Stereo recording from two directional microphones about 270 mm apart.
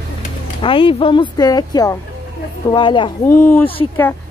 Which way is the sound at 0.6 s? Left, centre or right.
Centre.